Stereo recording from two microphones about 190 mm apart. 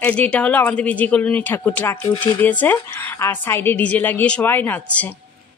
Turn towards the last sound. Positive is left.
turn(degrees=10)  # may be behind; listen again after turning